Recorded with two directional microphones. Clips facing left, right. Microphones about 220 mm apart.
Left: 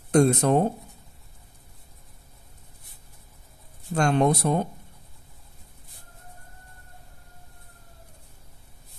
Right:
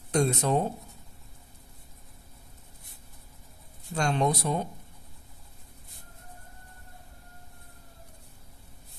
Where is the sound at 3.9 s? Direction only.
55° left (ahead or behind).